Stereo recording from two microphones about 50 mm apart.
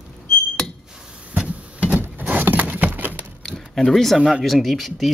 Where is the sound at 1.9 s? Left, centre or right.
Right.